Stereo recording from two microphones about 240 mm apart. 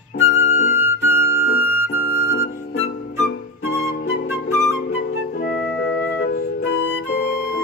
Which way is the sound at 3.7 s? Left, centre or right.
Left.